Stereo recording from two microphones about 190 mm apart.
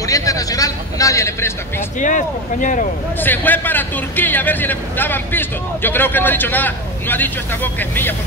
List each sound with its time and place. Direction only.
0.0 s a sound: 15° left (ahead or behind)
2.0 s speech: 40° left (ahead or behind)
3.2 s a man's voice: 10° left (ahead or behind)